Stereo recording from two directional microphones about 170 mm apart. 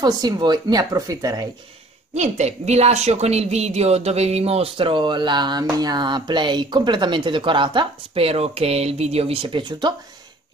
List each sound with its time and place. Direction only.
0.0 s speech: 25° right (ahead or behind)
2.1 s speech: 40° right (ahead or behind); by 9.9 s 25° right (ahead or behind)